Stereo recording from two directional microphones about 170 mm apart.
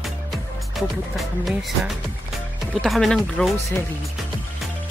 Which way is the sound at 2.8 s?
Centre (ahead or behind).